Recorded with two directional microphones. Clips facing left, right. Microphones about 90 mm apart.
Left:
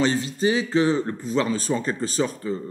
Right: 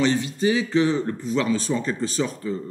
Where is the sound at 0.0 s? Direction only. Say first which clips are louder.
Right 1 dB; 35° left (ahead or behind).